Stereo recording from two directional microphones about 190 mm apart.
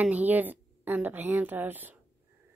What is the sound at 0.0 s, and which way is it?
Speech, 10° right (ahead or behind).